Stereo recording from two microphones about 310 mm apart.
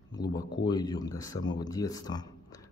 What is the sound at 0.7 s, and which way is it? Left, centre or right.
Speech, centre.